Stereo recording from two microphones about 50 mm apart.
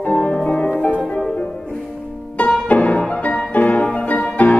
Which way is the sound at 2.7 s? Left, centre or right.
Left.